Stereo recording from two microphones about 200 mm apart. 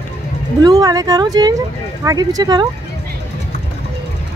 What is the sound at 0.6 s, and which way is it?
Speech, 20° right (ahead or behind).